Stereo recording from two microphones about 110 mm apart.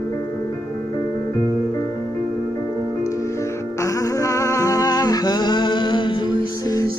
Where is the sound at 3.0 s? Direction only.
25° left (ahead or behind).